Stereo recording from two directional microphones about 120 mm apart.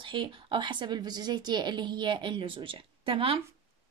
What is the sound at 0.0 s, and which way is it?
A woman's voice, 45° right (ahead or behind).